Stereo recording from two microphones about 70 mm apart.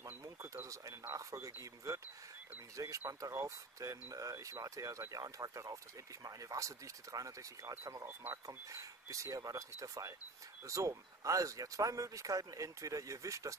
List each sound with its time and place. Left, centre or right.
0.0 s speech: right
7.8 s speech: right